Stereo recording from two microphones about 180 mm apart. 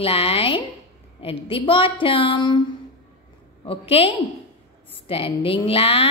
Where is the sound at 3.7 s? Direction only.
30° left (ahead or behind).